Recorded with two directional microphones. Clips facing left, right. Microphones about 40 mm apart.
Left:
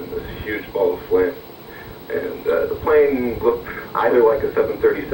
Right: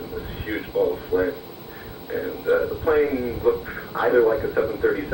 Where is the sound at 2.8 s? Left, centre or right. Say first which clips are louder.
Left 8 dB; left.